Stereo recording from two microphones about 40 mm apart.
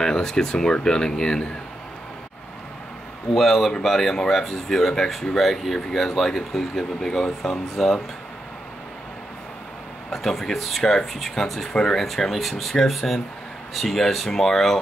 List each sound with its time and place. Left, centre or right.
0.0 s speech: centre
3.3 s speech: centre
10.1 s speech: centre
10.8 s speech: centre
11.1 s speech: centre
11.7 s speech: centre
12.0 s speech: centre